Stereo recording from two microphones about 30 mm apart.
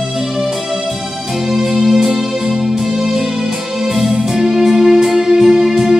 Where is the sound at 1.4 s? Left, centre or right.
Centre.